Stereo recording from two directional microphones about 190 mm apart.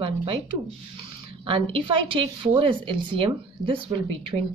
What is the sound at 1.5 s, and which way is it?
A woman's voice, 30° right (ahead or behind).